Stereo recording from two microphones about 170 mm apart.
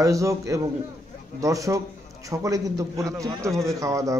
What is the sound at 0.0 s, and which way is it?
Speech, 20° right (ahead or behind).